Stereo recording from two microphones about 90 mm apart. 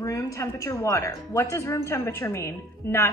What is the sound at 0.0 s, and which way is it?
A woman's voice, 35° left (ahead or behind).